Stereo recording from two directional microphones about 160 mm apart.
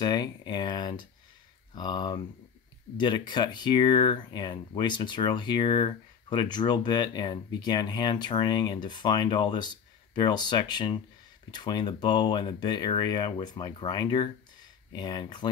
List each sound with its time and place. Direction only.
0.0 s speech: 25° left (ahead or behind)